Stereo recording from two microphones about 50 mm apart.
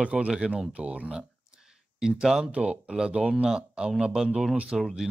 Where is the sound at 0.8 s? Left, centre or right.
Right.